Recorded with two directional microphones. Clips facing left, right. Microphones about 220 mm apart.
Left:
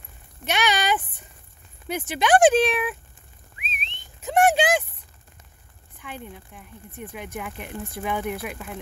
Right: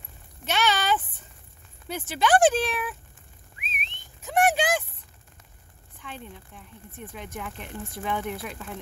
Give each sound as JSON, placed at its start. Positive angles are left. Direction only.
{"t": 0.5, "sound": "a sound", "side_deg": 15}
{"t": 1.9, "sound": "speech", "side_deg": 15}
{"t": 3.6, "sound": "whistling", "side_deg": 25}
{"t": 5.9, "sound": "speech", "side_deg": 10}